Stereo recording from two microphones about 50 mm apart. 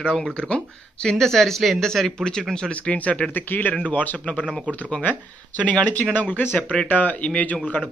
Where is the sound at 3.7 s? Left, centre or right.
Left.